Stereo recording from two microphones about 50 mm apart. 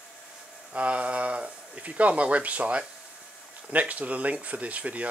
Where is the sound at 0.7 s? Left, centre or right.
Right.